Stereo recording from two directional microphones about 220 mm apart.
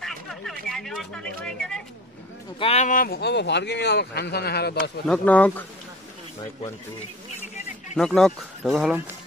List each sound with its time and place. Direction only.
0.0 s a sound: centre (ahead or behind)
0.7 s speech: centre (ahead or behind)
2.6 s speech: 30° left (ahead or behind); by 4.9 s 45° left (ahead or behind)
5.0 s speech: 5° left (ahead or behind)
7.9 s speech: centre (ahead or behind)